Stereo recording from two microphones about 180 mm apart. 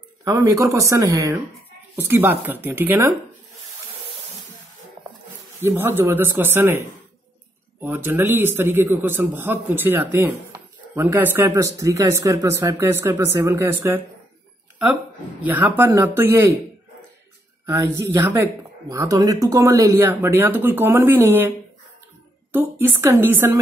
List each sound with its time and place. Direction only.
0.2 s speech: 15° right (ahead or behind)
5.6 s speech: 10° right (ahead or behind)
15.4 s speech: 10° right (ahead or behind)
17.6 s speech: 15° right (ahead or behind)
22.5 s speech: 10° right (ahead or behind)